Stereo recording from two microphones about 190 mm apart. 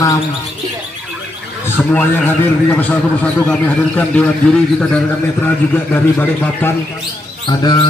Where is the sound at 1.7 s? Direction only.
10° left (ahead or behind).